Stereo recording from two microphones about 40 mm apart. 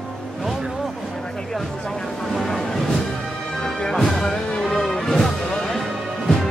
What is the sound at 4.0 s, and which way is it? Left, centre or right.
Music, centre.